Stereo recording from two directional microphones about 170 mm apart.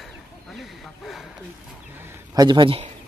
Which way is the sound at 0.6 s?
Centre (ahead or behind).